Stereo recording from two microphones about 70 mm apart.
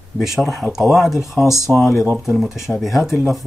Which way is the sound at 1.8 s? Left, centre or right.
Centre.